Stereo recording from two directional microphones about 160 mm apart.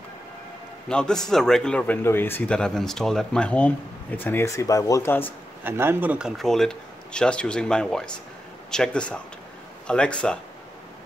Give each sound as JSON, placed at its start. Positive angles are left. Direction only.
{"t": 0.8, "sound": "a man's voice", "side_deg": 5}
{"t": 5.6, "sound": "a man's voice", "side_deg": -15}